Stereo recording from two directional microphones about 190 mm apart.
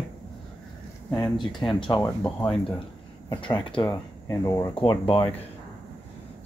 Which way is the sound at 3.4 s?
25° left (ahead or behind).